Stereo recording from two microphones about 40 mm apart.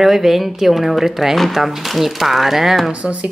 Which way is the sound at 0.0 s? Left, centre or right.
Centre.